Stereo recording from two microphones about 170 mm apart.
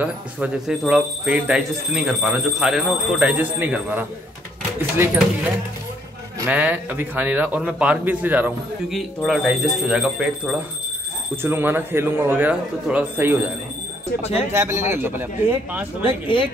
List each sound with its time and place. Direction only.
0.0 s a man's voice: 5° right (ahead or behind)
6.4 s a man's voice: 10° right (ahead or behind)
14.5 s a man's voice: 15° right (ahead or behind)
16.0 s speech: 30° left (ahead or behind)